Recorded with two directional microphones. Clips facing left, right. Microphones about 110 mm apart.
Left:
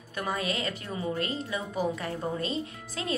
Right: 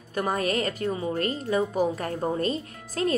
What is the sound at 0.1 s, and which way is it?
A woman's voice, 40° right (ahead or behind).